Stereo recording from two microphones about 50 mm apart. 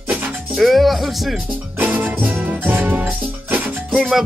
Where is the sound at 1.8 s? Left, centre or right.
Right.